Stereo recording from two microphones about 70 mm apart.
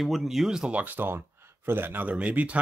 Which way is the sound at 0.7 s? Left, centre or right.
Right.